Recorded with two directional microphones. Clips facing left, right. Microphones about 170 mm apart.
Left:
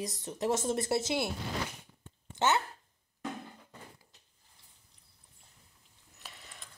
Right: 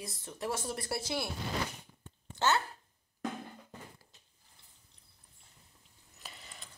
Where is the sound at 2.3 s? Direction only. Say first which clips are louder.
Left 1 dB; 20° left (ahead or behind).